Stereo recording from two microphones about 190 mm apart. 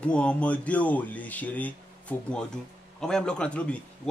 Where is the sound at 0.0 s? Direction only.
5° left (ahead or behind).